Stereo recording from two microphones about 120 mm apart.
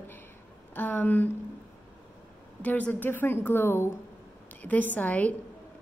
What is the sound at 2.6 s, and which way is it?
A woman's voice, 15° left (ahead or behind).